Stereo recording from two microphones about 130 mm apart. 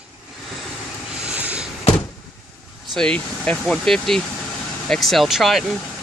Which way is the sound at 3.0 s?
10° left (ahead or behind).